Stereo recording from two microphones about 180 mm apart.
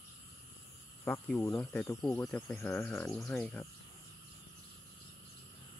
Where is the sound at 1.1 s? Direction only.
5° left (ahead or behind).